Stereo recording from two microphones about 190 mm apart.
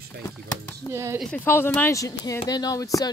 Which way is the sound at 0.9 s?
15° right (ahead or behind).